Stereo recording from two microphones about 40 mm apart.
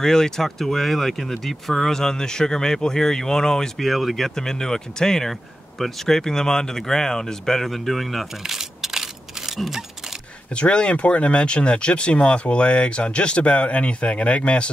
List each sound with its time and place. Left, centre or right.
0.0 s speech: centre
3.7 s speech: centre
4.4 s speech: centre
5.3 s speech: centre
8.4 s a sound: centre
10.5 s speech: left